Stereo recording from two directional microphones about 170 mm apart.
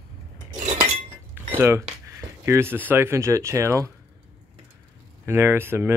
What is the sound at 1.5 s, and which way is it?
Speech, 15° right (ahead or behind).